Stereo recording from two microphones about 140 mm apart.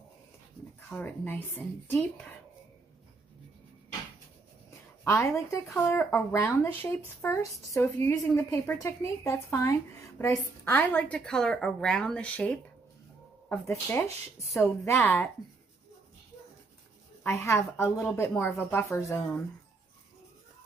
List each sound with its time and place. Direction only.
0.7 s a woman's voice: 15° left (ahead or behind)
5.0 s a woman's voice: 20° left (ahead or behind)
14.6 s a woman's voice: 15° left (ahead or behind)
17.2 s a woman's voice: 20° left (ahead or behind)